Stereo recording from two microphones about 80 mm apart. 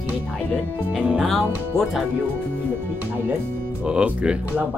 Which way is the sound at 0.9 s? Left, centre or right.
Centre.